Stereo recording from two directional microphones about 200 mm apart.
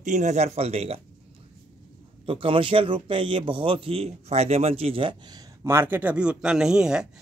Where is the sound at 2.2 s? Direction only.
25° right (ahead or behind).